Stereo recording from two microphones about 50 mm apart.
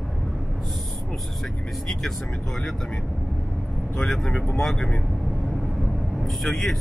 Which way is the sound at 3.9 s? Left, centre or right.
Centre.